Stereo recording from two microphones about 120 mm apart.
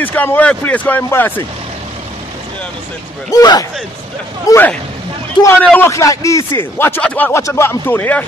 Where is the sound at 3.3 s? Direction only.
35° left (ahead or behind).